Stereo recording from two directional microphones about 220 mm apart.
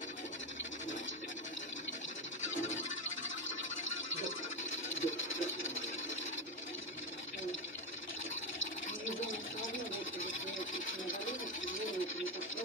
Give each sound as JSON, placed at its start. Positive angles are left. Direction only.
{"t": 4.6, "sound": "sewing machine", "side_deg": 60}
{"t": 9.0, "sound": "a sound", "side_deg": 60}
{"t": 10.7, "sound": "music", "side_deg": 60}